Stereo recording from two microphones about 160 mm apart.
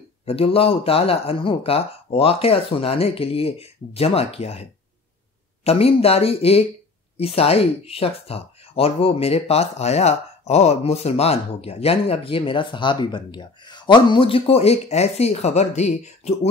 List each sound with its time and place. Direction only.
0.2 s speech: 40° left (ahead or behind)